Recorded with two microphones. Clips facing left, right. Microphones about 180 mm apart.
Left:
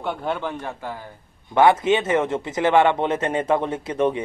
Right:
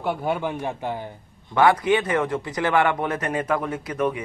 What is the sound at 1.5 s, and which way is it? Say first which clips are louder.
A man's voice: left 2 dB; 25° left (ahead or behind).